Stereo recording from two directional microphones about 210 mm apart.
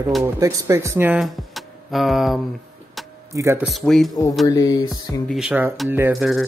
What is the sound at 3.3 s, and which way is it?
Speech, 15° right (ahead or behind).